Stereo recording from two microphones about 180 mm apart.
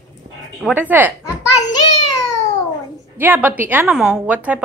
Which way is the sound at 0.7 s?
10° right (ahead or behind).